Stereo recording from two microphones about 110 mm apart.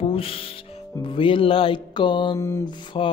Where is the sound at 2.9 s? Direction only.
50° left (ahead or behind).